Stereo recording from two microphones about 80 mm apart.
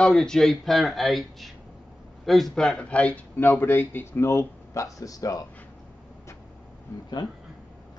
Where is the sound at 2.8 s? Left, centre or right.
Centre.